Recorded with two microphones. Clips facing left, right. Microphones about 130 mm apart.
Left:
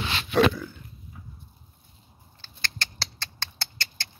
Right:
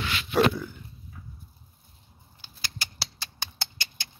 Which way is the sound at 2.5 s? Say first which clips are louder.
Left 4 dB; 10° right (ahead or behind).